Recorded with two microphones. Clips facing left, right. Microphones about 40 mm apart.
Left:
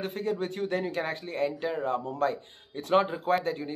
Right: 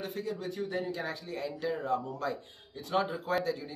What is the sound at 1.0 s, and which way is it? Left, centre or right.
Speech, left.